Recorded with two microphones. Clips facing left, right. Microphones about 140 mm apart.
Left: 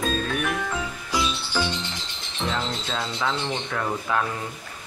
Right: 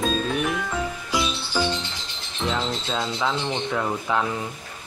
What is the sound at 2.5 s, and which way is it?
Speech, 10° right (ahead or behind).